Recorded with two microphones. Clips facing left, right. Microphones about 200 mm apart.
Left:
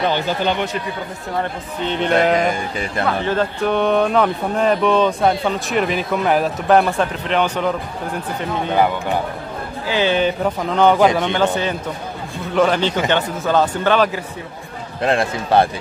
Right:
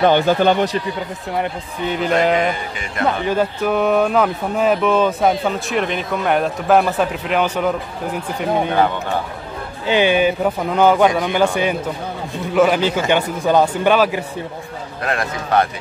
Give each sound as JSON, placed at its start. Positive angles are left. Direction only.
{"t": 0.0, "sound": "speech", "side_deg": -55}
{"t": 1.4, "sound": "speech", "side_deg": -5}
{"t": 8.7, "sound": "speech", "side_deg": 10}
{"t": 9.8, "sound": "speech", "side_deg": -15}
{"t": 15.0, "sound": "speech", "side_deg": 30}